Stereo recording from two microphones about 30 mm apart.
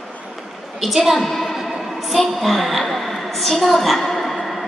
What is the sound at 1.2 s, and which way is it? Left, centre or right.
Speech, centre.